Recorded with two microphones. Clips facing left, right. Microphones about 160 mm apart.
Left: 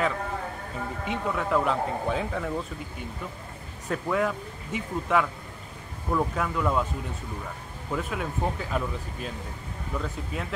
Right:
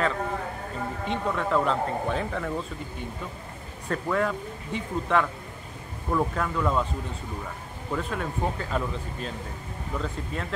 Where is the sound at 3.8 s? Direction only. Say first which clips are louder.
Even; 5° left (ahead or behind).